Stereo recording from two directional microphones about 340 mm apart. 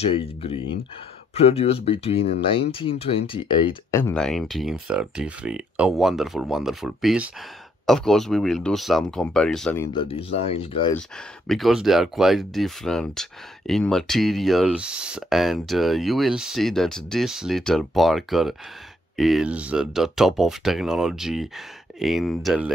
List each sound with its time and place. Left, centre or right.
0.0 s speech: centre
11.0 s speech: centre